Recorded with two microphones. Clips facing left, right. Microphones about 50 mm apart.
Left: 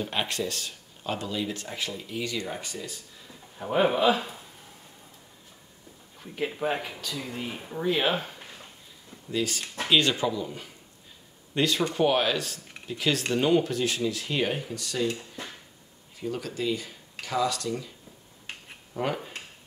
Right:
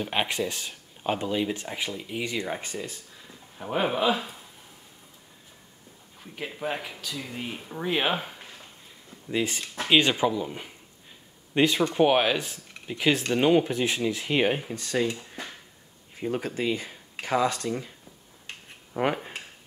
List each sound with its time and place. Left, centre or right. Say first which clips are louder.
0.0 s speech: right 2 dB; centre
3.5 s speech: left 3 dB; centre
6.1 s speech: left 5 dB; centre
7.8 s speech: left 1 dB; centre
9.3 s speech: right 1 dB; right
16.2 s speech: right 3 dB; right
18.9 s speech: right 4 dB; right